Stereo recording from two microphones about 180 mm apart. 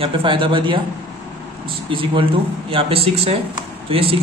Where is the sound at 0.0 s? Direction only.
30° right (ahead or behind).